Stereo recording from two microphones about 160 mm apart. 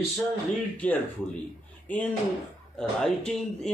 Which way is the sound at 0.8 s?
10° left (ahead or behind).